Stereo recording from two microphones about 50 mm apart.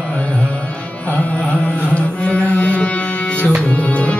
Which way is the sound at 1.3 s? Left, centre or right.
Left.